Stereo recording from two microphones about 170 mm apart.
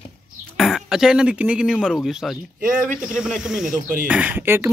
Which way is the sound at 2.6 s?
55° right (ahead or behind).